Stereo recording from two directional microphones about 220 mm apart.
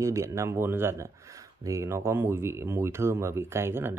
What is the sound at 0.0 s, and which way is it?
Speech, 15° right (ahead or behind).